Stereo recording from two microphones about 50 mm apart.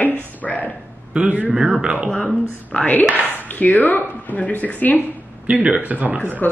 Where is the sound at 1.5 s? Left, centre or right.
Centre.